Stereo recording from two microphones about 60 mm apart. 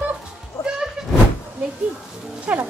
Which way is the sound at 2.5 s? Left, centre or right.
Right.